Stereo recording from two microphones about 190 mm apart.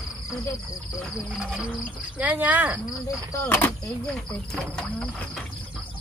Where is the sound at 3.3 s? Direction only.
10° left (ahead or behind).